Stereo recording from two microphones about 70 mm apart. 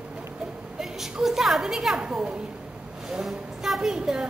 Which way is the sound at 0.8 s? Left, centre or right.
Centre.